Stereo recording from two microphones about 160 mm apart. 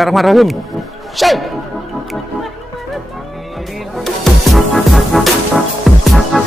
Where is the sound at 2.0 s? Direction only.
Centre (ahead or behind).